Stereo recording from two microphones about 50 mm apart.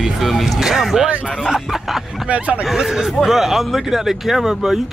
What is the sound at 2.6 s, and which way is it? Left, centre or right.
Speech, centre.